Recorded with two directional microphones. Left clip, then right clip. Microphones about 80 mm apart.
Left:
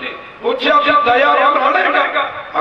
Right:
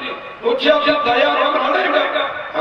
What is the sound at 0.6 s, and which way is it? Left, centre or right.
A man's voice, left.